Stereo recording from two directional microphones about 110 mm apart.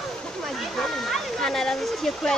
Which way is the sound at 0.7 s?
5° left (ahead or behind).